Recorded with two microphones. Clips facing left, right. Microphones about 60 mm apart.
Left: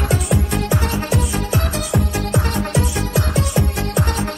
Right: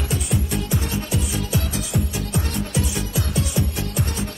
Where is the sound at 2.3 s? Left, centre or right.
Left.